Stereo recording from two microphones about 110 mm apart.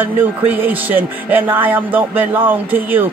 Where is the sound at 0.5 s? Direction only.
15° right (ahead or behind).